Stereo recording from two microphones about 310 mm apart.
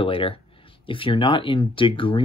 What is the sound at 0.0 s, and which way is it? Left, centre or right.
Speech, centre.